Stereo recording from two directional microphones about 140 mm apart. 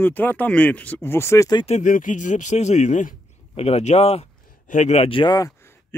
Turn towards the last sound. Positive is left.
turn(degrees=15)  # may be behind; listen again after turning